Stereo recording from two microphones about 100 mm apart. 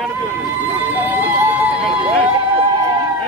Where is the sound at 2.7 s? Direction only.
40° right (ahead or behind).